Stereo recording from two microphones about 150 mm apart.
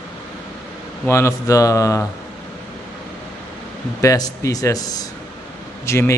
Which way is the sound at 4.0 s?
20° left (ahead or behind).